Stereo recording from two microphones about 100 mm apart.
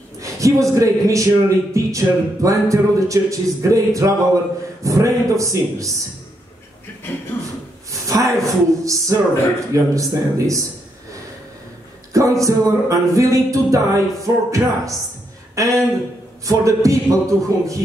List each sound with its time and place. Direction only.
0.2 s speech: 30° right (ahead or behind)
7.9 s speech: 30° right (ahead or behind)
12.1 s speech: 35° right (ahead or behind)